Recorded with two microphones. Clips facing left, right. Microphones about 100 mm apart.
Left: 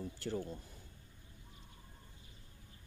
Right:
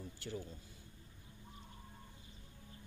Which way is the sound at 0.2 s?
45° left (ahead or behind).